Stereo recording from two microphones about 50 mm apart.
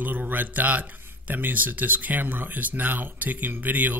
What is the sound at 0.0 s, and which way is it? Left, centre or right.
Speech, right.